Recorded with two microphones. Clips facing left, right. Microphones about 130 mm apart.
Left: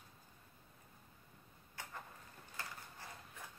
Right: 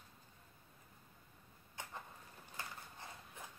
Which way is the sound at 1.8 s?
20° right (ahead or behind).